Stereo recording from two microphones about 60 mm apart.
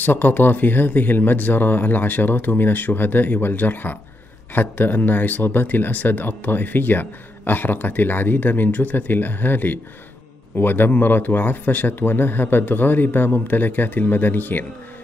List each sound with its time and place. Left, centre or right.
0.0 s speech: left